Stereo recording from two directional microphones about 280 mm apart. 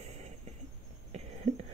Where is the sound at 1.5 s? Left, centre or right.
Right.